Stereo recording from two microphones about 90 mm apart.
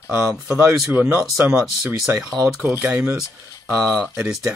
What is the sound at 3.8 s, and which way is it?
Speech, 5° left (ahead or behind).